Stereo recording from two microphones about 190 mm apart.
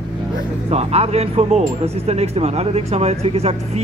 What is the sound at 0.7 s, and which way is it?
Speech, 35° right (ahead or behind).